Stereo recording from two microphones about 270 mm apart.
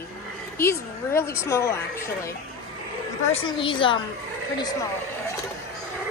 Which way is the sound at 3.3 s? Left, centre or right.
Centre.